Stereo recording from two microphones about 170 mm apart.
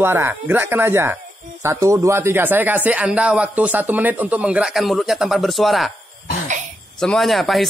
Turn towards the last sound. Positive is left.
turn(degrees=0)  # may be behind; listen again after turning